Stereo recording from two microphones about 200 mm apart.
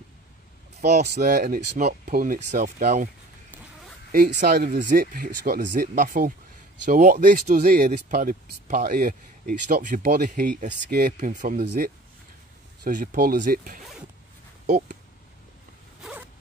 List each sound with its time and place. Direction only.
0.7 s speech: 35° right (ahead or behind)
4.1 s speech: 50° right (ahead or behind)
11.1 s speech: 40° right (ahead or behind)
11.6 s speech: 55° right (ahead or behind)
12.8 s speech: 45° right (ahead or behind)
16.0 s zipper: 5° right (ahead or behind)